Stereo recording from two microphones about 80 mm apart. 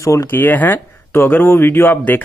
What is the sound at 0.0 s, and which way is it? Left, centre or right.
Speech, left.